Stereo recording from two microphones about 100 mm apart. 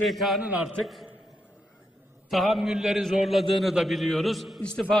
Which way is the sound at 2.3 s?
Centre (ahead or behind).